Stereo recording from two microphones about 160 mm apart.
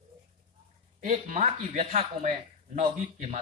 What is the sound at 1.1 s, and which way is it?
Speech, 45° right (ahead or behind).